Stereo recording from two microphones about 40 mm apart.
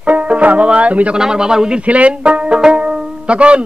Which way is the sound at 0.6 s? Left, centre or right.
Right.